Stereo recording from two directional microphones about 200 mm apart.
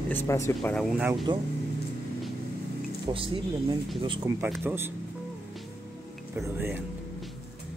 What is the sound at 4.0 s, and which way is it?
Speech, 25° right (ahead or behind).